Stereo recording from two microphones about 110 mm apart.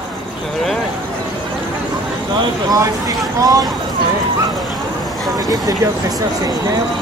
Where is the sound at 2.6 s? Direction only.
30° right (ahead or behind).